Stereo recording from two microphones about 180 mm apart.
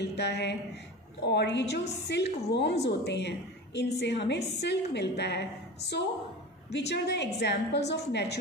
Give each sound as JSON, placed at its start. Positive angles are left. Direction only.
{"t": 0.0, "sound": "a woman's voice", "side_deg": 70}